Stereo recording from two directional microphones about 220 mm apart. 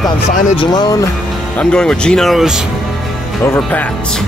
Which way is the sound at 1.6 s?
5° left (ahead or behind).